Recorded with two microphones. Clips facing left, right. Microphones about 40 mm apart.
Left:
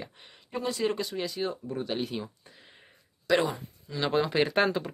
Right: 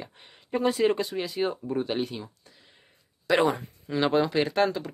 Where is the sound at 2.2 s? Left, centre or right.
Centre.